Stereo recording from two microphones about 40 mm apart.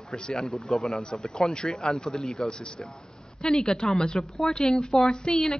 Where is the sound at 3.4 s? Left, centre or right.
Centre.